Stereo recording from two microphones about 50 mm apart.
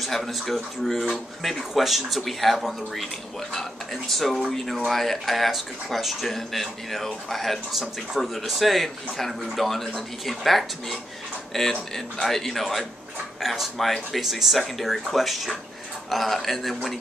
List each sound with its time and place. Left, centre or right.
0.0 s speech: centre